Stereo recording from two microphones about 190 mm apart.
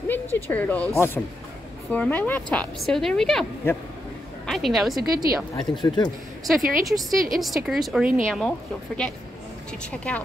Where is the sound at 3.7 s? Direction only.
15° left (ahead or behind).